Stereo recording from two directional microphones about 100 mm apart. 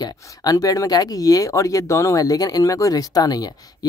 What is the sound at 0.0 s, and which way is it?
Speech, 40° left (ahead or behind).